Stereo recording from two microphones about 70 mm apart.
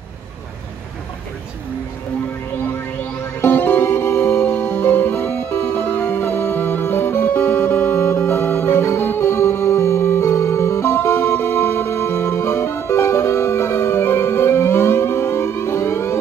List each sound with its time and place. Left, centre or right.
2.5 s music: left